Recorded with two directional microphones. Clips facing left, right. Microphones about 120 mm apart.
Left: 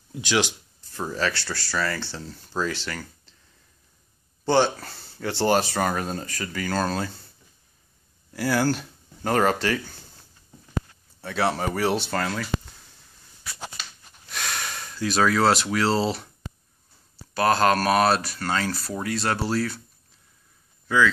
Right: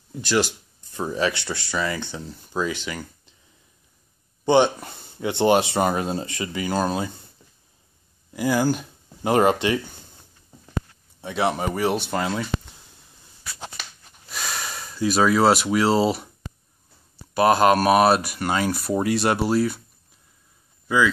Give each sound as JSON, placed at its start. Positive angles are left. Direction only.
{"t": 0.3, "sound": "speech", "side_deg": -5}
{"t": 0.9, "sound": "speech", "side_deg": -15}
{"t": 4.5, "sound": "speech", "side_deg": -15}
{"t": 8.3, "sound": "speech", "side_deg": -15}
{"t": 11.1, "sound": "speech", "side_deg": -15}
{"t": 14.3, "sound": "speech", "side_deg": -5}
{"t": 17.3, "sound": "speech", "side_deg": -10}